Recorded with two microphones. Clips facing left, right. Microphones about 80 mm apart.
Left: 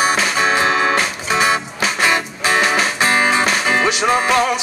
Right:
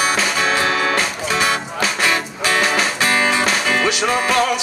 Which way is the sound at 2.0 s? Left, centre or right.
Left.